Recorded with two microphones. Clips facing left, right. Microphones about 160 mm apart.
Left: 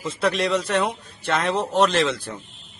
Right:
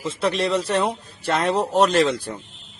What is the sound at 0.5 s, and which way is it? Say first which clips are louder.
Speech: right 1 dB; 30° right (ahead or behind).